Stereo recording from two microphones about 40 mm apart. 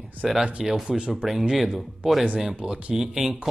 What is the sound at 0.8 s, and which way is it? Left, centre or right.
Speech, right.